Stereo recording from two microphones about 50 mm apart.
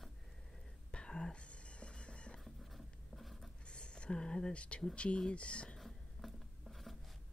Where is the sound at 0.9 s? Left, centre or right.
Centre.